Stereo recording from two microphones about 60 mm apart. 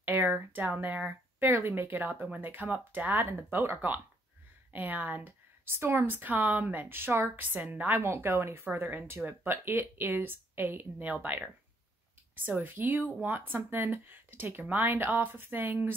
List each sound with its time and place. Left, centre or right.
0.0 s speech: right
3.5 s speech: right
4.7 s speech: right
8.0 s speech: right
11.0 s speech: right
12.4 s speech: right